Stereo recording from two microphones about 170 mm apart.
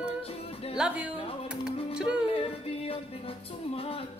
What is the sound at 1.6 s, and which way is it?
Music, 5° right (ahead or behind).